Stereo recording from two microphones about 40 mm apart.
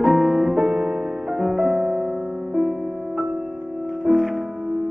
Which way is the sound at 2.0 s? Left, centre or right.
Right.